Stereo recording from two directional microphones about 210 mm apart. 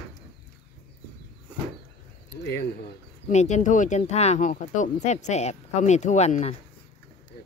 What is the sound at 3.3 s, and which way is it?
Speech, 35° left (ahead or behind).